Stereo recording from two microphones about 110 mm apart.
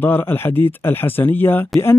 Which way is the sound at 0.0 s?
20° left (ahead or behind).